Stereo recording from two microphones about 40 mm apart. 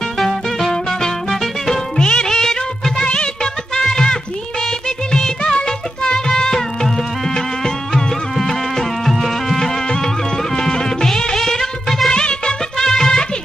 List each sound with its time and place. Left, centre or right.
0.2 s music: centre
2.0 s music of bollywood: centre
3.7 s a sound: centre
4.8 s music: centre
10.5 s music: centre
11.3 s music of bollywood: centre
12.1 s music: left